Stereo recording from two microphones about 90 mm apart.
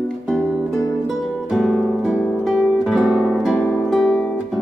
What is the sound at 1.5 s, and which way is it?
Music, 10° right (ahead or behind).